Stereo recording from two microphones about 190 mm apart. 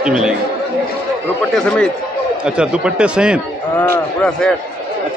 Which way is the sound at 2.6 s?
5° right (ahead or behind).